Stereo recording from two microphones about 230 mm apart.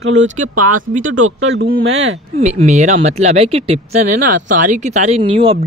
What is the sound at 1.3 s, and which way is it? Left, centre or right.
Speech, right.